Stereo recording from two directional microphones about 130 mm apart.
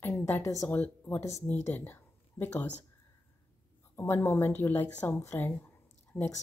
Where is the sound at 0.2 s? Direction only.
25° left (ahead or behind).